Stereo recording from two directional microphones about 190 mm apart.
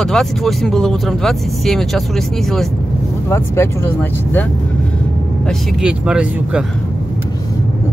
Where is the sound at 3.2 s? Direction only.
15° left (ahead or behind).